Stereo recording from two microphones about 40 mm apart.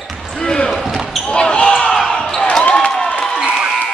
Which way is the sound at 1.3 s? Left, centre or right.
Left.